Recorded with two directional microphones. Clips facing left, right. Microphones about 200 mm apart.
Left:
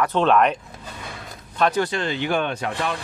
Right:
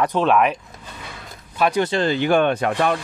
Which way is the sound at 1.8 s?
35° right (ahead or behind).